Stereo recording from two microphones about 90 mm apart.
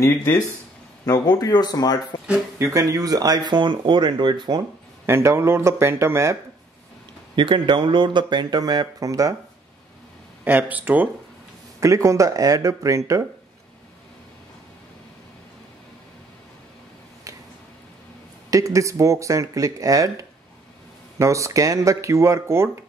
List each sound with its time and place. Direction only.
0.0 s speech: 30° left (ahead or behind)
1.0 s speech: 50° left (ahead or behind)
2.6 s speech: 40° right (ahead or behind); by 4.6 s 55° right (ahead or behind)
5.0 s speech: 30° right (ahead or behind)
7.3 s speech: 65° right (ahead or behind); by 9.3 s 40° right (ahead or behind)
10.4 s speech: 20° right (ahead or behind)
11.8 s speech: 35° right (ahead or behind)
18.5 s speech: 40° right (ahead or behind)